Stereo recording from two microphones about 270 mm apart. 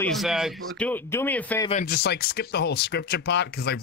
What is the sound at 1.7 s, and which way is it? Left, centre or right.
Speech, left.